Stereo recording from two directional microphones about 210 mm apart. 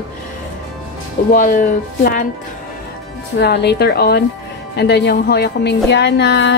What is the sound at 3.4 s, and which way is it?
A woman's voice, 50° left (ahead or behind).